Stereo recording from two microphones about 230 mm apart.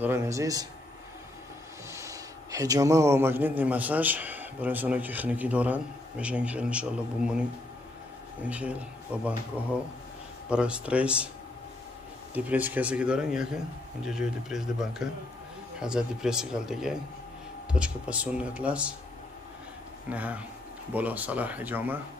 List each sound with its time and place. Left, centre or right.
0.0 s speech: centre
1.9 s speech: centre
12.4 s speech: centre
20.1 s speech: centre